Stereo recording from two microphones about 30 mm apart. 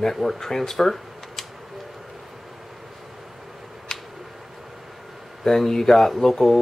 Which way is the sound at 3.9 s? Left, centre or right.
Centre.